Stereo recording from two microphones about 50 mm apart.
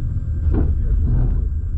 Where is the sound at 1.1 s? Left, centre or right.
Centre.